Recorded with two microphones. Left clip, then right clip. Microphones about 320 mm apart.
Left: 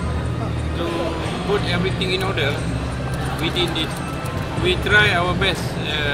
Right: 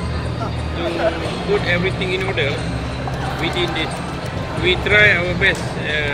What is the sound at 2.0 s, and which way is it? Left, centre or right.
Speech, centre.